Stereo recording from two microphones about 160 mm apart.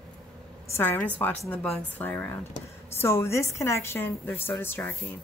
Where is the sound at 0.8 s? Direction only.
10° left (ahead or behind).